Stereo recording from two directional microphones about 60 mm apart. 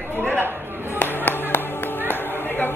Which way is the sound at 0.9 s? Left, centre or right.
Left.